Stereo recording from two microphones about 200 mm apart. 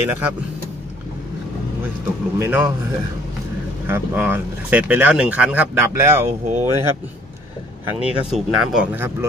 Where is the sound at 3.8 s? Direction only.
10° right (ahead or behind).